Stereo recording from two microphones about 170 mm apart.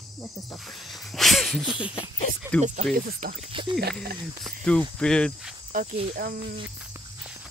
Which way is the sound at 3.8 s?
65° right (ahead or behind).